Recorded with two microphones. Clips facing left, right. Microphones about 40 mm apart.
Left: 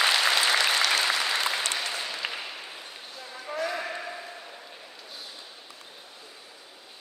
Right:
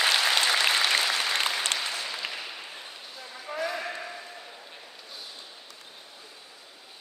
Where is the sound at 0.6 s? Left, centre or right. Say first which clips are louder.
Even; centre.